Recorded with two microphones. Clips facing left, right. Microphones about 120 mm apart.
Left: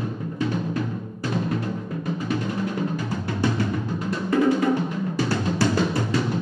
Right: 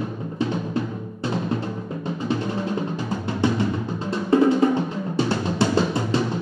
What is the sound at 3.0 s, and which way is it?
Drum, 25° right (ahead or behind).